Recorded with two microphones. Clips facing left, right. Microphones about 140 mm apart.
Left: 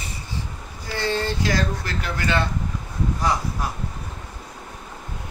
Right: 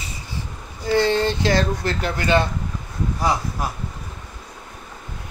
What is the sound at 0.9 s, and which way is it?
Speech, 20° right (ahead or behind).